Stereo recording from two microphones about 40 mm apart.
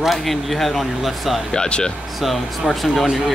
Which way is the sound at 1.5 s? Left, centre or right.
Left.